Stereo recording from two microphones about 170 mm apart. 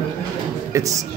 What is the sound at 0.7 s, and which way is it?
Speech, 20° right (ahead or behind).